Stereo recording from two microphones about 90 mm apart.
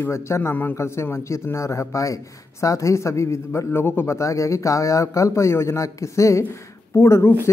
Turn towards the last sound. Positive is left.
turn(degrees=30)  # may be behind; listen again after turning